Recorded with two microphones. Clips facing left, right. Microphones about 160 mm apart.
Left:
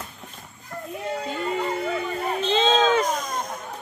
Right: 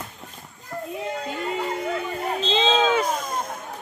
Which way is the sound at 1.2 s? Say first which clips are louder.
Left 2 dB; 10° right (ahead or behind).